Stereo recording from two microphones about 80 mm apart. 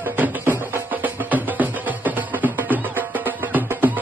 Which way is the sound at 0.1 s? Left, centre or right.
Right.